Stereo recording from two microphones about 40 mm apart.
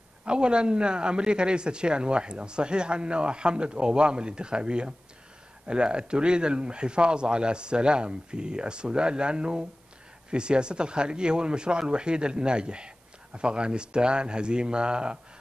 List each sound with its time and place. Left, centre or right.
0.2 s a man's voice: right